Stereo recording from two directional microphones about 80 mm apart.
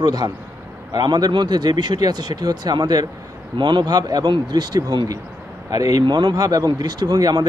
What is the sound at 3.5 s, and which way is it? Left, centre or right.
Speech, right.